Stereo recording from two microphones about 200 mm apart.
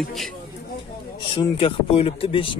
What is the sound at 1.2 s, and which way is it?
Speech, 25° left (ahead or behind).